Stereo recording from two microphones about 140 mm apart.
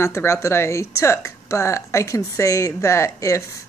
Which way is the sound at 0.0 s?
20° left (ahead or behind).